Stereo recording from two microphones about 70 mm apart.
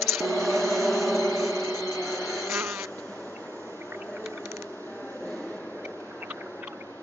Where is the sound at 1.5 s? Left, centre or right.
Left.